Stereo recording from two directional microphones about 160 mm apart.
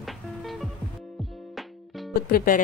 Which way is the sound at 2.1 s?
65° left (ahead or behind).